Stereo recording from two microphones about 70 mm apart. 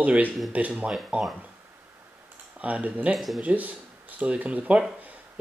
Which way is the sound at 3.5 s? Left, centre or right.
Right.